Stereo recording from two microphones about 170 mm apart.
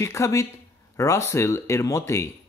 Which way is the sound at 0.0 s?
15° left (ahead or behind).